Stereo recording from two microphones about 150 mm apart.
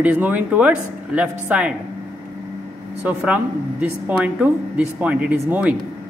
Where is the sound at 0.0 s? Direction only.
10° right (ahead or behind).